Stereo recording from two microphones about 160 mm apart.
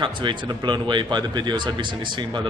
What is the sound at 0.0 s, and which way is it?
A man's voice, 30° right (ahead or behind).